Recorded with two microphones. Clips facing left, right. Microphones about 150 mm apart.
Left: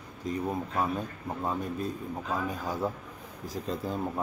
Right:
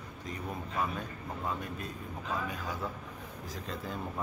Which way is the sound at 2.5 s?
35° left (ahead or behind).